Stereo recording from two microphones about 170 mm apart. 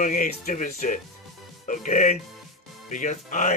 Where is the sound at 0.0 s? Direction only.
50° left (ahead or behind).